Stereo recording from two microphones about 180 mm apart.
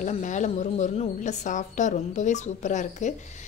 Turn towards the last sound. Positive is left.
turn(degrees=40)  # may be behind; listen again after turning